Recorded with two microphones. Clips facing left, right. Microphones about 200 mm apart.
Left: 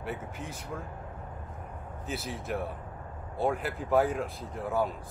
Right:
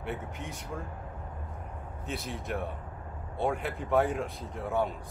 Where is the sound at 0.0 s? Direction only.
Centre (ahead or behind).